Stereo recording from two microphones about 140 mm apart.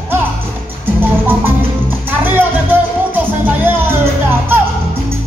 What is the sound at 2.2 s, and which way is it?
Music, 15° right (ahead or behind).